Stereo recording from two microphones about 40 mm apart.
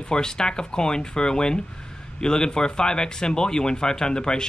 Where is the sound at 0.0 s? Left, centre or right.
Centre.